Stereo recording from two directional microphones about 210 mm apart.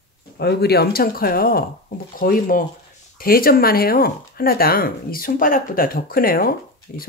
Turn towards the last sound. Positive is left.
turn(degrees=45)  # may be behind; listen again after turning